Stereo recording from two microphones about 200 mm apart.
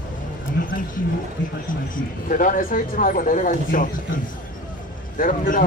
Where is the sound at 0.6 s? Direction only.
60° left (ahead or behind).